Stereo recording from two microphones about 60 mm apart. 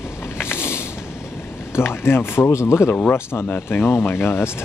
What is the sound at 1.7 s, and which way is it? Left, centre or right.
Speech, left.